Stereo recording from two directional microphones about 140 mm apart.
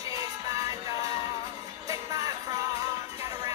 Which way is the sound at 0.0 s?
25° right (ahead or behind).